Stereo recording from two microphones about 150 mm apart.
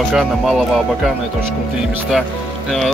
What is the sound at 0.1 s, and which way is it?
Speech, centre (ahead or behind).